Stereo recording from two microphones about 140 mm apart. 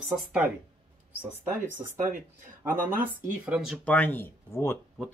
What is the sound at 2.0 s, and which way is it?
Speech, 70° right (ahead or behind).